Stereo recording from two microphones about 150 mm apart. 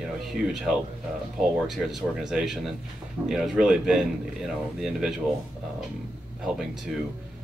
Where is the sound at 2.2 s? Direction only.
5° right (ahead or behind).